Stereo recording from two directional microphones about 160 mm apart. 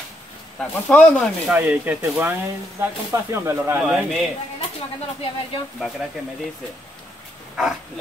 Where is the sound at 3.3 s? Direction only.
15° right (ahead or behind).